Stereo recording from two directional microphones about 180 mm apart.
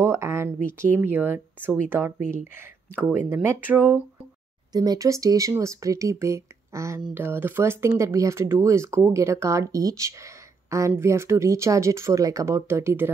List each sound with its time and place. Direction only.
0.0 s speech: 15° right (ahead or behind)